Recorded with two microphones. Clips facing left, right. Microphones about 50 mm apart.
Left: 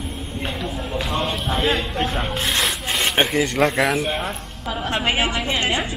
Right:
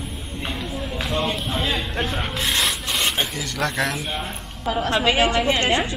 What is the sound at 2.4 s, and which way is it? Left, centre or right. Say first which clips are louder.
Rub: even; centre.